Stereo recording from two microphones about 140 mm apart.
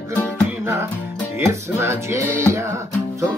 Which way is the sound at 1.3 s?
20° right (ahead or behind).